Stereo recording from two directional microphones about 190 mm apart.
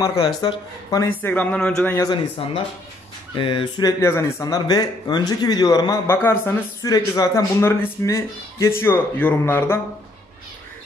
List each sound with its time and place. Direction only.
0.0 s speech: 20° left (ahead or behind)
2.0 s speech: 30° left (ahead or behind); by 9.8 s 10° left (ahead or behind)